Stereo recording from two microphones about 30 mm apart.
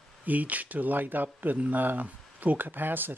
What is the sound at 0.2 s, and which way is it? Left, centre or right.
Speech, right.